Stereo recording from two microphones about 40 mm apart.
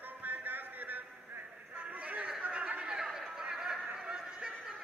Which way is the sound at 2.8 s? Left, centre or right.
Centre.